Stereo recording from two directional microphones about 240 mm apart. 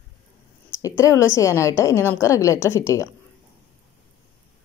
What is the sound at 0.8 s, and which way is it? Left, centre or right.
A woman's voice, centre.